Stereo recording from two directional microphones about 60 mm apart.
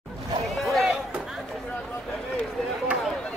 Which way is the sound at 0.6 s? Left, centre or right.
Centre.